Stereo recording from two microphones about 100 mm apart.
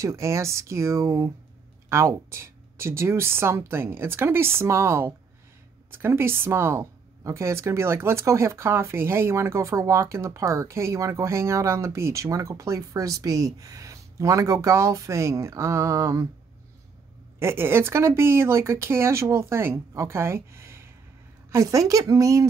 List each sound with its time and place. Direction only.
0.0 s speech: 30° right (ahead or behind)
17.4 s a woman's voice: 25° right (ahead or behind)